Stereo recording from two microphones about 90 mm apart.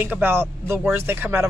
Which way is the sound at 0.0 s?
25° right (ahead or behind).